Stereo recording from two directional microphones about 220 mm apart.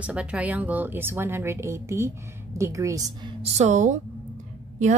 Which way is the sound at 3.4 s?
30° right (ahead or behind).